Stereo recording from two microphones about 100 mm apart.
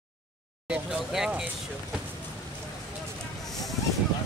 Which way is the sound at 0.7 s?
5° right (ahead or behind).